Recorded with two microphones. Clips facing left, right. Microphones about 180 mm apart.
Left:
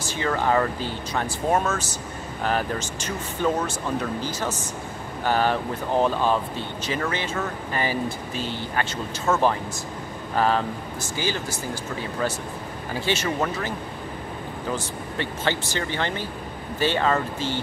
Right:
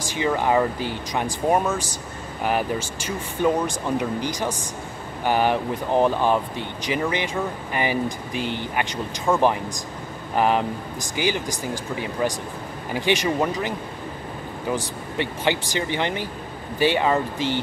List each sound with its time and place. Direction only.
0.0 s speech: 10° right (ahead or behind)